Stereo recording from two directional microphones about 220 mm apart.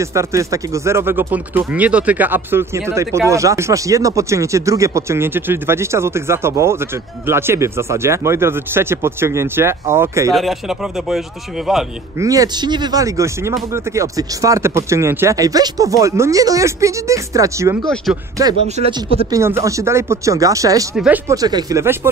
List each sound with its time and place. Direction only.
0.0 s speech: 15° right (ahead or behind)
10.3 s speech: centre (ahead or behind)
12.2 s speech: 15° right (ahead or behind)
19.3 s speech: 15° right (ahead or behind)